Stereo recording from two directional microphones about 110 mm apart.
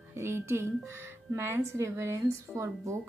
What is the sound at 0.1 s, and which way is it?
A woman's voice, 25° right (ahead or behind).